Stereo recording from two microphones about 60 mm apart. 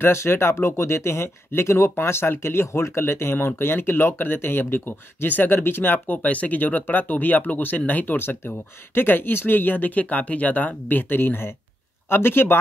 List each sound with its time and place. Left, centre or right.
0.0 s speech: left